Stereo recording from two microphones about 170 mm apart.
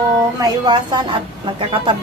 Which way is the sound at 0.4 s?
25° right (ahead or behind).